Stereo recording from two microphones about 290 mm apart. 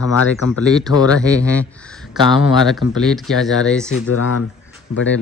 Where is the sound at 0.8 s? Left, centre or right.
Centre.